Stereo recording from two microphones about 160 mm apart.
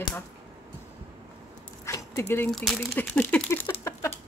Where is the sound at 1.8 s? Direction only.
20° left (ahead or behind).